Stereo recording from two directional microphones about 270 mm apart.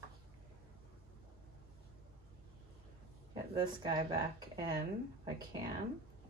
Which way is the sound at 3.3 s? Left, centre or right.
Centre.